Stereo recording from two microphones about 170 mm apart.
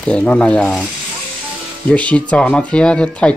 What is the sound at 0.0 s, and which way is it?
Speech, 5° left (ahead or behind).